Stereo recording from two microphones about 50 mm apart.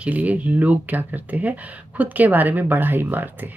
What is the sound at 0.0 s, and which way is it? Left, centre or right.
Speech, right.